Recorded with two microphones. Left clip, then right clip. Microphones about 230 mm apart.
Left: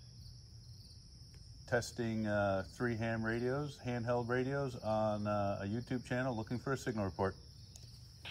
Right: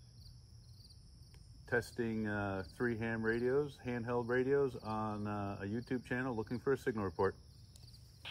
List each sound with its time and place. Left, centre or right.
1.8 s speech: left